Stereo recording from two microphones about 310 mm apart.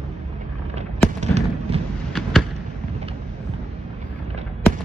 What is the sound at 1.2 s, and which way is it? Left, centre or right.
Fireworks, right.